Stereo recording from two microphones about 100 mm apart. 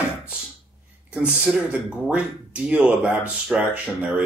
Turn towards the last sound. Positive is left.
turn(degrees=-15)  # may be behind; listen again after turning